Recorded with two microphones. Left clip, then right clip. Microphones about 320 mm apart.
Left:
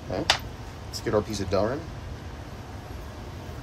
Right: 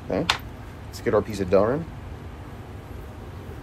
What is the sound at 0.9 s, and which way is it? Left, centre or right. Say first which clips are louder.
Speech: right 4 dB; right.